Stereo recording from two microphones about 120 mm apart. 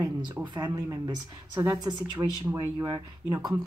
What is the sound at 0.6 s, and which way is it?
Speech, 30° right (ahead or behind).